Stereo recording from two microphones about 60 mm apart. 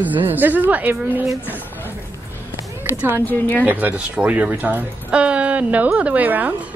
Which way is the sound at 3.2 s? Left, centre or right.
Left.